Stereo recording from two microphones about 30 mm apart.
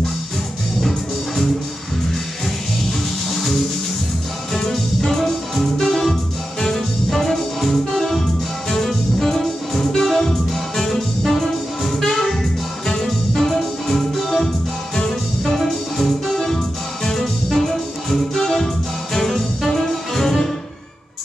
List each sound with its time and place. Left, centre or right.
0.8 s music: centre
3.3 s music: centre
8.6 s music: centre
12.0 s music: centre
13.3 s music: centre
15.0 s music: left
15.5 s music: centre